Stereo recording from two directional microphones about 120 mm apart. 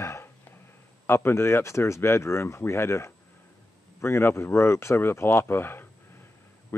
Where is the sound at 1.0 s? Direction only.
20° left (ahead or behind).